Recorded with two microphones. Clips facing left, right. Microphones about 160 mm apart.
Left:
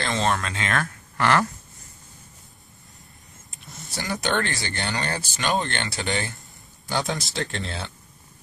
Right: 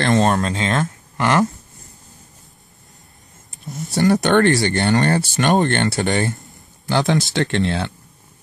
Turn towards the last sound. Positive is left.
turn(degrees=-75)  # may be behind; listen again after turning